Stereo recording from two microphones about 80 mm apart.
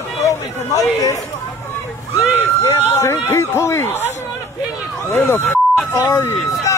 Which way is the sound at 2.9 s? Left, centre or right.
Left.